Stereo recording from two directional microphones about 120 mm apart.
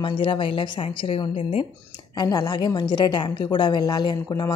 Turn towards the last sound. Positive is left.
turn(degrees=35)  # may be behind; listen again after turning